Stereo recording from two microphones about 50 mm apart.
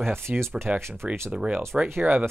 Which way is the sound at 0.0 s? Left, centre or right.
Right.